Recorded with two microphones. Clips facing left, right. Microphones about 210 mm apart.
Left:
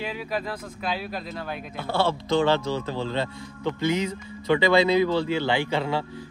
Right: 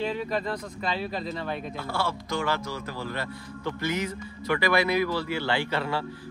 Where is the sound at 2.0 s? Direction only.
25° left (ahead or behind).